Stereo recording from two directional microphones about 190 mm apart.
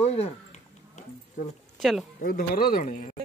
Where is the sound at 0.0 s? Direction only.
35° left (ahead or behind).